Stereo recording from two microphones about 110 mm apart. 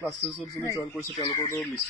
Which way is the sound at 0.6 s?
30° left (ahead or behind).